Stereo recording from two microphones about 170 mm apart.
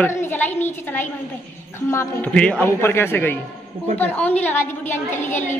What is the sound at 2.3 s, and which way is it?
A man's voice, 5° left (ahead or behind).